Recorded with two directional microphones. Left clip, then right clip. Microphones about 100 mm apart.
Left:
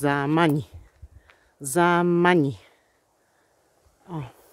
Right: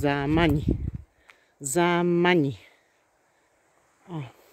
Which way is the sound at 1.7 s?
5° left (ahead or behind).